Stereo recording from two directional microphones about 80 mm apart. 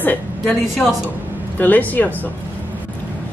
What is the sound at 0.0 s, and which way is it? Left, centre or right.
Speech, left.